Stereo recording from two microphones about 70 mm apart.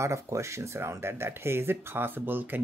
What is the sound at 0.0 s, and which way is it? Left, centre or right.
Speech, right.